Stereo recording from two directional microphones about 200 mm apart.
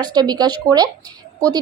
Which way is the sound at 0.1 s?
20° right (ahead or behind).